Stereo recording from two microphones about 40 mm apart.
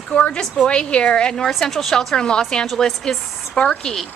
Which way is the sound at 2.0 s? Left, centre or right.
Centre.